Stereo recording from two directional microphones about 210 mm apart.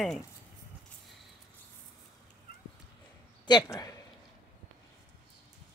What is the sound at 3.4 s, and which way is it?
Speech, 20° left (ahead or behind).